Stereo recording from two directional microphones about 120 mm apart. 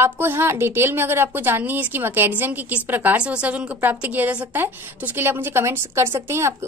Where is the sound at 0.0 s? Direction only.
20° right (ahead or behind).